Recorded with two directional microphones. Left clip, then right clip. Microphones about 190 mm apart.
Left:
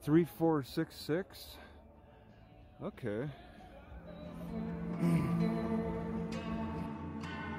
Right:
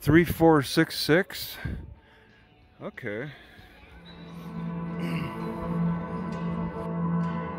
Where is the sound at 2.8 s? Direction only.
10° right (ahead or behind).